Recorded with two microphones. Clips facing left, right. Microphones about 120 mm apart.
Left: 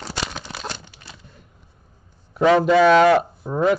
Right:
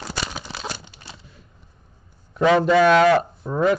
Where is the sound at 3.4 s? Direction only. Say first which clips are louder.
Even; 10° left (ahead or behind).